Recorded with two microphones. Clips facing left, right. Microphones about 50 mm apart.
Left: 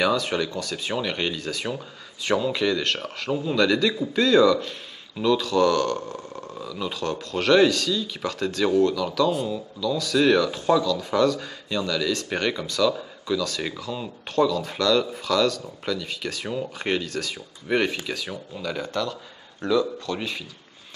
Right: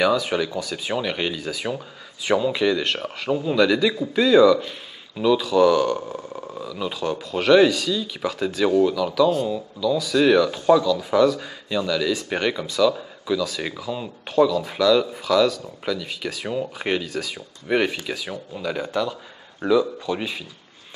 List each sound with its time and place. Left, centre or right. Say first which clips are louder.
0.0 s speech: right 2 dB; centre